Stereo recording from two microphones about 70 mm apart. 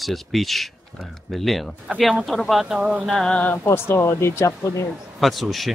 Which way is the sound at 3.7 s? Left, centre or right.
Left.